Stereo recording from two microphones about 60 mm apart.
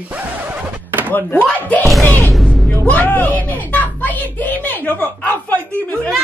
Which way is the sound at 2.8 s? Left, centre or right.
Left.